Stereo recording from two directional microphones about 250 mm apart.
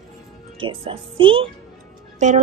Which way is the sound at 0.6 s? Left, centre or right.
Right.